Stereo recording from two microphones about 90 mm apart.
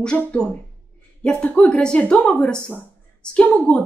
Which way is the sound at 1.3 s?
15° left (ahead or behind).